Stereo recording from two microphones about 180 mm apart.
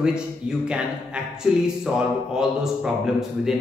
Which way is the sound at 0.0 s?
5° right (ahead or behind).